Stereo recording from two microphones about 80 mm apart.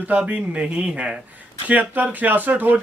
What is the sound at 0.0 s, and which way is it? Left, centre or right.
Speech, centre.